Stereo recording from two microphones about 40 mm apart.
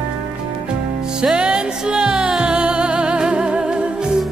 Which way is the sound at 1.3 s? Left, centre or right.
Right.